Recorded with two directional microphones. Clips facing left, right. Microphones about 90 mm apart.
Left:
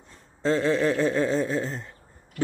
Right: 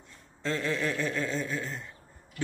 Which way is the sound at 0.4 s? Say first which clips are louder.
Left 8 dB; 25° left (ahead or behind).